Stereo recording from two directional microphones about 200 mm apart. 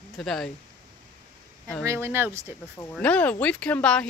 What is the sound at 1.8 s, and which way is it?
Speech, 15° right (ahead or behind).